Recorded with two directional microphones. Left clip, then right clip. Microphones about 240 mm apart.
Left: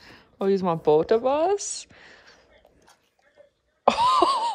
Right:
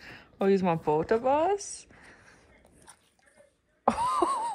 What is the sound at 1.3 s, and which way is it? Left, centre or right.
Speech, centre.